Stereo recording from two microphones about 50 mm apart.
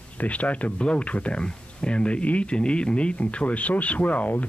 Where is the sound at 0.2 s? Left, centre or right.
Left.